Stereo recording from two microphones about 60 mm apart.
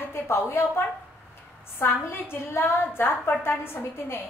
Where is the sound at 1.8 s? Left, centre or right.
Left.